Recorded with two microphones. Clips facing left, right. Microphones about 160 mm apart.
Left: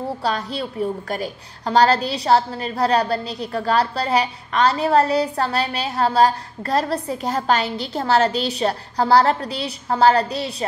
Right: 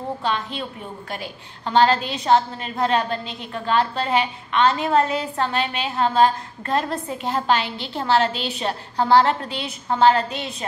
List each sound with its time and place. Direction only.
0.2 s a woman's voice: 35° left (ahead or behind)